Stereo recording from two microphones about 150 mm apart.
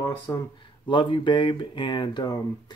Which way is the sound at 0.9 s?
35° left (ahead or behind).